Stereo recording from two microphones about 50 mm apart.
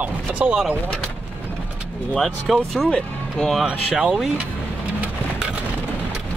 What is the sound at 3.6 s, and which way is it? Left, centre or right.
Speech, centre.